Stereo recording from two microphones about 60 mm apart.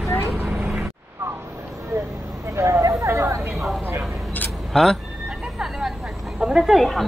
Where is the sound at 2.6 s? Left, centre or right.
Right.